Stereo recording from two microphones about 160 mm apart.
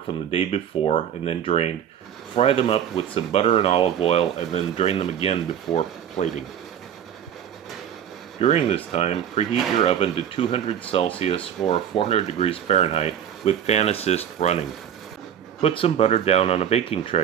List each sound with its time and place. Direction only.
0.3 s speech: 35° left (ahead or behind)
8.4 s speech: 40° left (ahead or behind)